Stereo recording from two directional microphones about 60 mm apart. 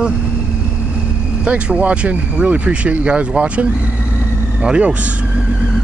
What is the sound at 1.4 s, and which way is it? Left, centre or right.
Speech, right.